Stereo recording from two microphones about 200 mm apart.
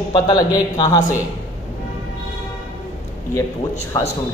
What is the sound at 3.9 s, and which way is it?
Speech, 15° left (ahead or behind).